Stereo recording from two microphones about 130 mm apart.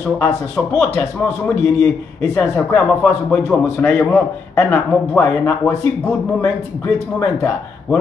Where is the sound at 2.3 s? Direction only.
15° left (ahead or behind).